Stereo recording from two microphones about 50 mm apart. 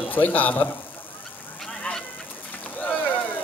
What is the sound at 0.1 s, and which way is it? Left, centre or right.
Speech, left.